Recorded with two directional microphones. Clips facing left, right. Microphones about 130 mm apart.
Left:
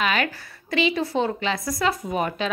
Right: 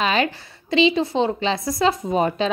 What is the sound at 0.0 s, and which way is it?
A woman's voice, 25° right (ahead or behind).